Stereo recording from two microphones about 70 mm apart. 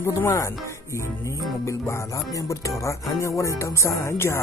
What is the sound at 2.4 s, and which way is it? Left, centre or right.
Speech, left.